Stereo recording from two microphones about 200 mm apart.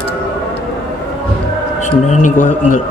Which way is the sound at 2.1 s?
40° left (ahead or behind).